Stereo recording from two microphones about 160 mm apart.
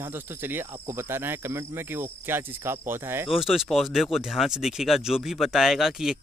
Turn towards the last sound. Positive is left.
turn(degrees=-5)  # may be behind; listen again after turning